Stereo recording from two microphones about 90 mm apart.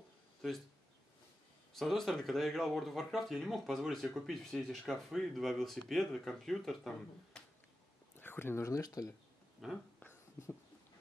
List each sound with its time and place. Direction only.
1.8 s speech: 5° left (ahead or behind)
8.2 s speech: 25° left (ahead or behind); by 9.1 s 40° left (ahead or behind)
9.6 s speech: centre (ahead or behind)